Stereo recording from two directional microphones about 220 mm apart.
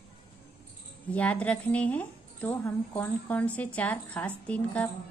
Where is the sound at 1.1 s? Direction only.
5° left (ahead or behind).